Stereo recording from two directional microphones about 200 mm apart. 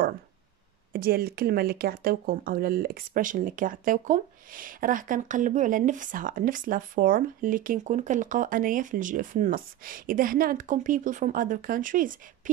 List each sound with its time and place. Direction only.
0.9 s speech: 50° right (ahead or behind)